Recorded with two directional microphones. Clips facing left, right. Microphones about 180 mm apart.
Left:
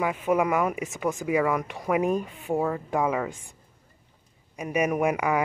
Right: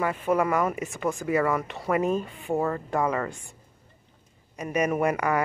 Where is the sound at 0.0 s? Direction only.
10° left (ahead or behind).